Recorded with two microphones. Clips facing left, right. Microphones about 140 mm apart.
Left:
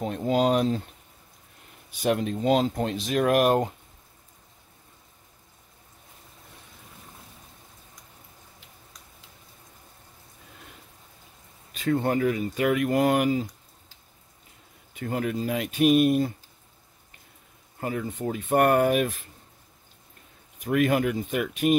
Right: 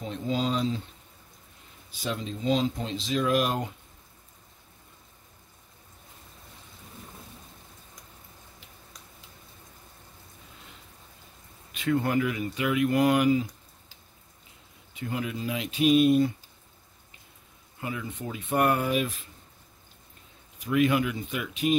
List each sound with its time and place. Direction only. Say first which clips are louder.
0.0 s speech: left 6 dB; 55° left (ahead or behind)
1.9 s speech: left 8 dB; 60° left (ahead or behind)
11.7 s speech: left 1 dB; 35° left (ahead or behind)
15.0 s speech: left 4 dB; 50° left (ahead or behind)
17.7 s speech: left 5 dB; 45° left (ahead or behind)
20.5 s speech: left 1 dB; 50° left (ahead or behind)